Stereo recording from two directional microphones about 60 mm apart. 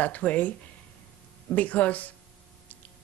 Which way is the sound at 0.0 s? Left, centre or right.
Left.